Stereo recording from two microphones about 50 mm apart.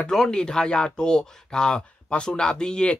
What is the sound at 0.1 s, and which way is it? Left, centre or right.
Speech, centre.